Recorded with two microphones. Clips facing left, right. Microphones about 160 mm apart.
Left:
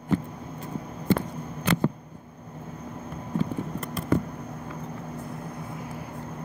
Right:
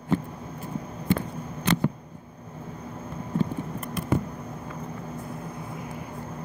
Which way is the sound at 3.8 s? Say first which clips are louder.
Left 2 dB; 10° right (ahead or behind).